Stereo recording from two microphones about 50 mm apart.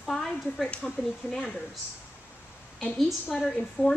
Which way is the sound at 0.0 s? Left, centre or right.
Centre.